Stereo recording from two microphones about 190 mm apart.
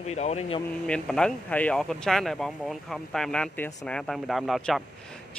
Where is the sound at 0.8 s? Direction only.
5° left (ahead or behind).